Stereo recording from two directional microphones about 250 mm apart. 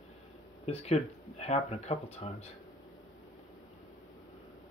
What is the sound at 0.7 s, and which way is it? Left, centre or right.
Speech, left.